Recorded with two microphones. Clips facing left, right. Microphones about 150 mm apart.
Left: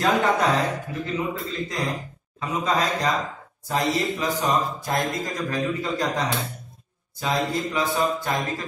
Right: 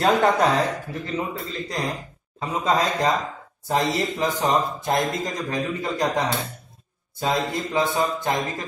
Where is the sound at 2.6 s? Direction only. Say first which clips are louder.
Right 2 dB; 25° right (ahead or behind).